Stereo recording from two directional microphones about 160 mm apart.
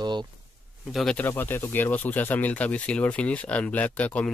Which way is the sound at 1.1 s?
10° left (ahead or behind).